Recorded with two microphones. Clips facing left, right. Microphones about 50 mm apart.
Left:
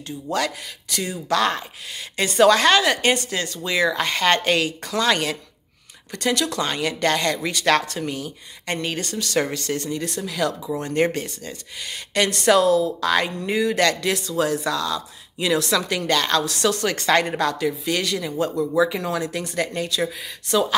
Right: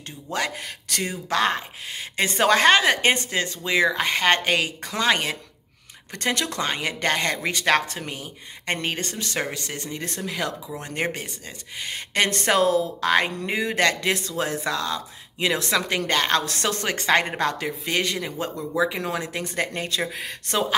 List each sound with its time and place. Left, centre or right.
0.3 s speech: right
0.8 s speech: right
1.3 s speech: right
10.8 s speech: centre
11.9 s speech: right
16.9 s speech: right